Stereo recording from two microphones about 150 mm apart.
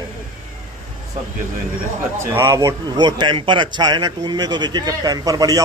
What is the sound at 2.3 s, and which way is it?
A man's voice, 20° right (ahead or behind).